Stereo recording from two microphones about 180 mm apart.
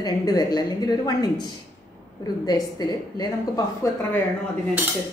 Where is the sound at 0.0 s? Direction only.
20° left (ahead or behind).